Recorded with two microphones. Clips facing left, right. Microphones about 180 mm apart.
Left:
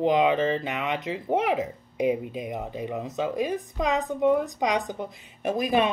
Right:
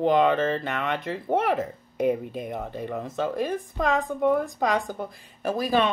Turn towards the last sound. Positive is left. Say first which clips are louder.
# even
turn(degrees=15)  # may be behind; listen again after turning